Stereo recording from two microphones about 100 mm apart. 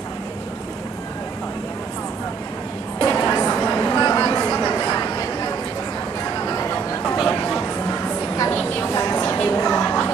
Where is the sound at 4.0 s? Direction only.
45° left (ahead or behind).